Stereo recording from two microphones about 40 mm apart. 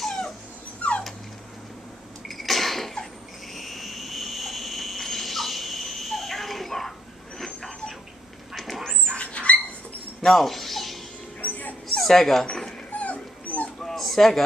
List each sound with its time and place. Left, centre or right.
0.0 s dog: centre
0.8 s dog: left
2.2 s a sound: centre
3.5 s dog: centre
7.3 s vehicle: centre
8.5 s a sound: centre
9.1 s dog: left
10.2 s a sound: centre
11.4 s dog: left
12.0 s speech: centre
12.4 s dog: centre
12.9 s dog: left
13.9 s a sound: centre